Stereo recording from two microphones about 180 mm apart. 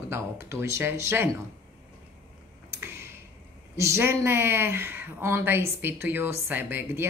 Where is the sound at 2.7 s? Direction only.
15° right (ahead or behind).